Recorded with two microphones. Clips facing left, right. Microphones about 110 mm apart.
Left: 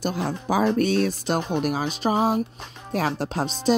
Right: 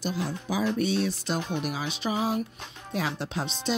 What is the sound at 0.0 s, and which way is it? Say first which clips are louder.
Speech: left 5 dB; 50° left (ahead or behind).